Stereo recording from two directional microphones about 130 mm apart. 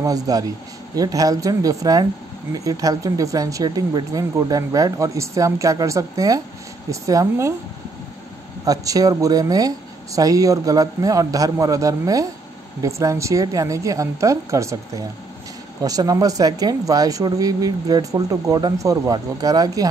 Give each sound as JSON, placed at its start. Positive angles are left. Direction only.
{"t": 0.0, "sound": "speech", "side_deg": -30}
{"t": 8.6, "sound": "speech", "side_deg": -25}